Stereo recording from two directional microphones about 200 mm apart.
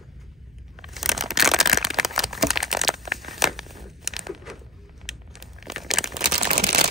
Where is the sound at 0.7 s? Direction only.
Centre (ahead or behind).